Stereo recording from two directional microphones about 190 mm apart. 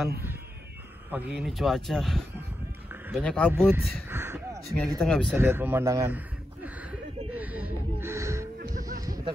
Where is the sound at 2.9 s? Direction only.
10° right (ahead or behind).